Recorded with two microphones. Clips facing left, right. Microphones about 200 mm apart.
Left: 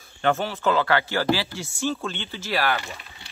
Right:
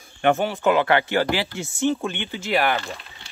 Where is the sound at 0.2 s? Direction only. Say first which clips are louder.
Right 3 dB; 15° right (ahead or behind).